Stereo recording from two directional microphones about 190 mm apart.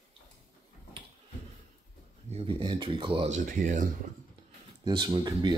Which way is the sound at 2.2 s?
35° right (ahead or behind).